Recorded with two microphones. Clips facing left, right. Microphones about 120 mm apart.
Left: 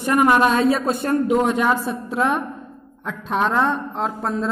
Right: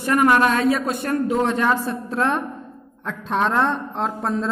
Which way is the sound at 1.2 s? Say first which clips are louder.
Left 1 dB; 15° left (ahead or behind).